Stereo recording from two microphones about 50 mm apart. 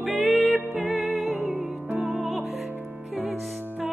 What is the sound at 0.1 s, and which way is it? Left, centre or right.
Music, right.